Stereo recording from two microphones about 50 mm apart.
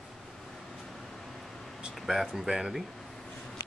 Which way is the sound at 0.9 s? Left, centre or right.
Centre.